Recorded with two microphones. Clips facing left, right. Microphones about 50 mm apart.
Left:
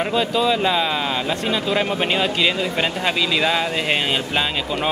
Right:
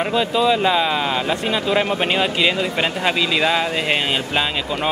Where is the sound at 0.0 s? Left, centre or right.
Centre.